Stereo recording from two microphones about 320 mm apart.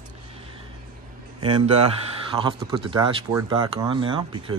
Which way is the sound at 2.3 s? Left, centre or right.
Centre.